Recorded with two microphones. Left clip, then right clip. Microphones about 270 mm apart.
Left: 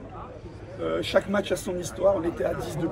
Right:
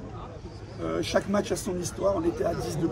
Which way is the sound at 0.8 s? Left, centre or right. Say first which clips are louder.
Left 3 dB; centre.